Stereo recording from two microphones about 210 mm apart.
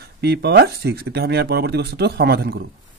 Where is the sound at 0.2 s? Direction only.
50° right (ahead or behind).